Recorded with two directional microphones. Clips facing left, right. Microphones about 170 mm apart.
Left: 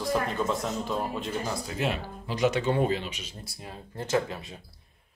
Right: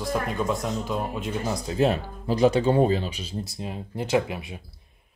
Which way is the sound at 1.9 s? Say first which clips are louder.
Right 7 dB; 35° right (ahead or behind).